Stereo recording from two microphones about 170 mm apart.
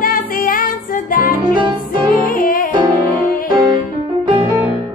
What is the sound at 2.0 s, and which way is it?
Music, 60° left (ahead or behind).